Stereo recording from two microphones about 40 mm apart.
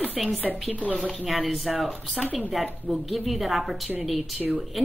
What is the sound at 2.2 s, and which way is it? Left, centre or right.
Speech, right.